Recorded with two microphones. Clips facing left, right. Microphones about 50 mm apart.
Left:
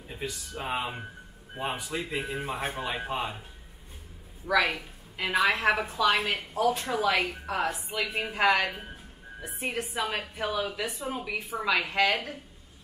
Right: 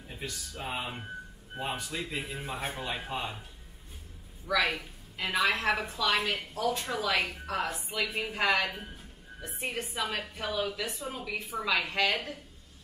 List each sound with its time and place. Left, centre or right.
0.1 s speech: centre
4.5 s a woman's voice: centre
8.6 s speech: centre